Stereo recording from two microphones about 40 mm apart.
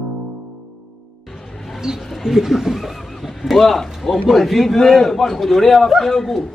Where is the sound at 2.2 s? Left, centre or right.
Centre.